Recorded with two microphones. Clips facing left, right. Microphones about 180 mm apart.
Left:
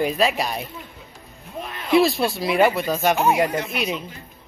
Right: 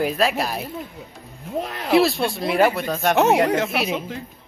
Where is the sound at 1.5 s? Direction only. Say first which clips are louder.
Right 1 dB; 90° right.